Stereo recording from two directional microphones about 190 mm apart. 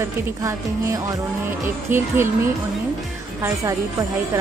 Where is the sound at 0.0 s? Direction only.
15° right (ahead or behind).